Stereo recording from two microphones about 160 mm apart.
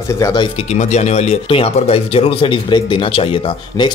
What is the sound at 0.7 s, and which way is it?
Speech, 45° left (ahead or behind).